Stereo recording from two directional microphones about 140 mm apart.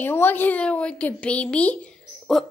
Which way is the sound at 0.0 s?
15° left (ahead or behind).